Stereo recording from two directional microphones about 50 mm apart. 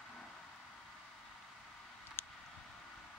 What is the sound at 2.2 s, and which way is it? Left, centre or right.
Vehicle, left.